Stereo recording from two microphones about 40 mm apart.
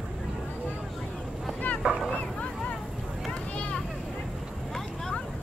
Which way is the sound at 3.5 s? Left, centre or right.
Left.